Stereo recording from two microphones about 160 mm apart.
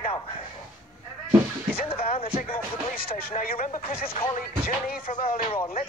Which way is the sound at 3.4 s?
65° left (ahead or behind).